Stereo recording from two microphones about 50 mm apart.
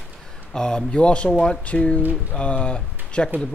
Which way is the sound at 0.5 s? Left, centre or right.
Centre.